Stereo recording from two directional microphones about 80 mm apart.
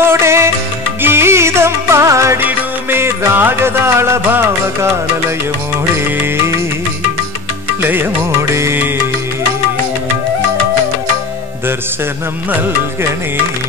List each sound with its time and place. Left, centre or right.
0.0 s music: right
2.4 s music: right
7.8 s music: right